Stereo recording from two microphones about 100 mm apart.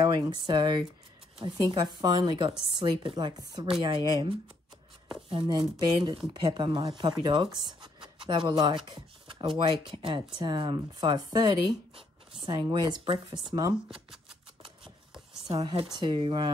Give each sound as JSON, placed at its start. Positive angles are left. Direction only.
{"t": 0.0, "sound": "speech", "side_deg": -50}
{"t": 5.5, "sound": "speech", "side_deg": -45}
{"t": 15.4, "sound": "speech", "side_deg": -45}